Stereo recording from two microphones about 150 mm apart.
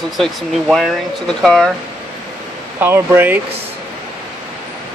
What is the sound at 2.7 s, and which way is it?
Speech, 15° right (ahead or behind).